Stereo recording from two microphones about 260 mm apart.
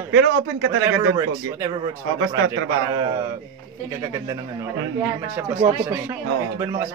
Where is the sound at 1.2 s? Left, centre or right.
Centre.